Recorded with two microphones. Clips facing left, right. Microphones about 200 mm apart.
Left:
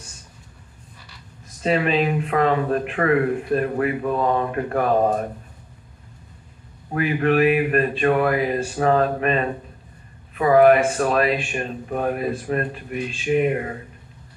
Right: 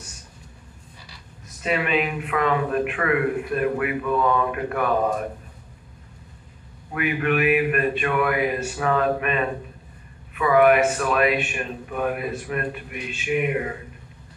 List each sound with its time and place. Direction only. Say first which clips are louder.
1.6 s speech: left 3 dB; 35° left (ahead or behind)
6.9 s speech: left 3 dB; 35° left (ahead or behind)